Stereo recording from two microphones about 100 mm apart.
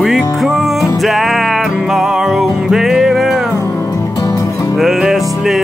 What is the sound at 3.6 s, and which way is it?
Music, 30° left (ahead or behind).